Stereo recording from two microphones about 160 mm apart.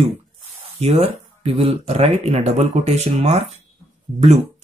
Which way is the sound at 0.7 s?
40° right (ahead or behind).